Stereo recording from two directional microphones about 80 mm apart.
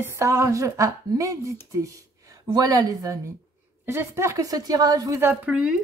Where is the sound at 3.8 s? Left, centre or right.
Right.